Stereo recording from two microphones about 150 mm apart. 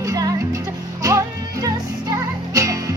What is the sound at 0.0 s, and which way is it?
Music, 25° right (ahead or behind).